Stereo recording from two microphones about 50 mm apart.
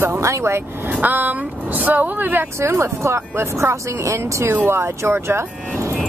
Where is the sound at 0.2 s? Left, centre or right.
Right.